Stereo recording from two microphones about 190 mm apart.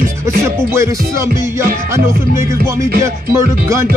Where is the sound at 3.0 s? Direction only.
15° right (ahead or behind).